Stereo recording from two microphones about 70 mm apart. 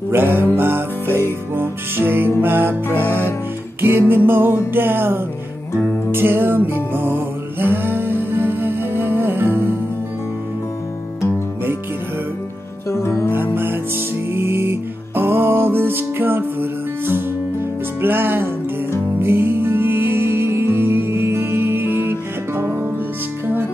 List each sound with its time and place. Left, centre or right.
0.1 s music: right
12.9 s music: left
13.3 s music: right